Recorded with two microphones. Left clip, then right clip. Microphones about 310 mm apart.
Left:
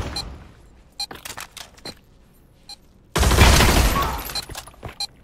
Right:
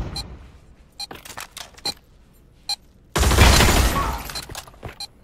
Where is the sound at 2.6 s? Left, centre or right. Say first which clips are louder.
Right 13 dB; centre.